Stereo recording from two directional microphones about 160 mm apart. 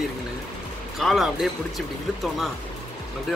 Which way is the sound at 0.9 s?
Centre (ahead or behind).